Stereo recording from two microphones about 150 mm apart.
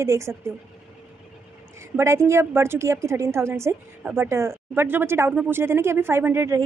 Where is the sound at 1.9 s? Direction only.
20° right (ahead or behind).